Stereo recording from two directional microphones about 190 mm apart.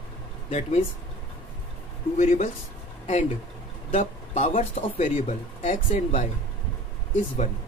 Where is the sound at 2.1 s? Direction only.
40° left (ahead or behind).